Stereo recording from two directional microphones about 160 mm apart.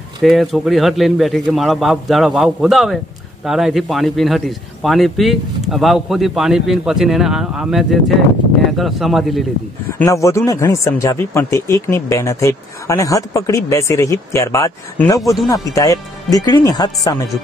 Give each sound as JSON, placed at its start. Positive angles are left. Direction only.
{"t": 0.2, "sound": "a man's voice", "side_deg": 0}
{"t": 10.0, "sound": "speech", "side_deg": 20}